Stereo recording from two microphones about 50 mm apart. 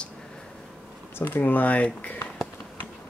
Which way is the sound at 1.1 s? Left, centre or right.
Left.